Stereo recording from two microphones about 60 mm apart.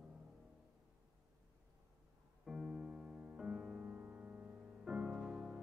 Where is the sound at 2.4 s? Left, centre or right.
Centre.